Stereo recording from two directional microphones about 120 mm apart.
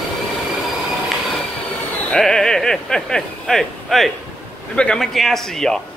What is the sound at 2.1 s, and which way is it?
A man's voice, 5° left (ahead or behind).